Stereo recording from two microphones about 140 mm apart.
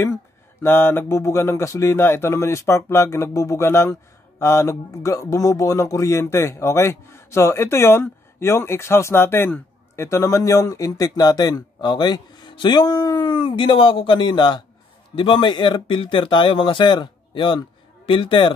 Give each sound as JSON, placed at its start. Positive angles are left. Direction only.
{"t": 0.6, "sound": "speech", "side_deg": 15}